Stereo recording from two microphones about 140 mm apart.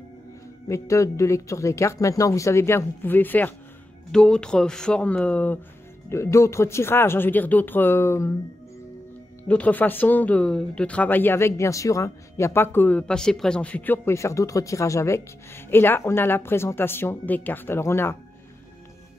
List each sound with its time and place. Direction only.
0.7 s speech: 20° left (ahead or behind)
9.4 s speech: 10° left (ahead or behind)